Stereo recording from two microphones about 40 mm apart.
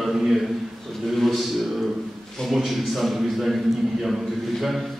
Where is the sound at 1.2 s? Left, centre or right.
Centre.